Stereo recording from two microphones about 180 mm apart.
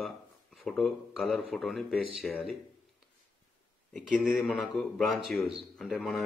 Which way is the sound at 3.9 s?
Centre (ahead or behind).